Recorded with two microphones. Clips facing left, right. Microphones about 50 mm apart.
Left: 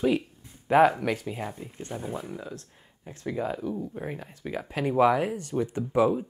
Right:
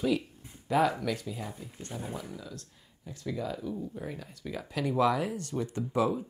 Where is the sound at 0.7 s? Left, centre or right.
Left.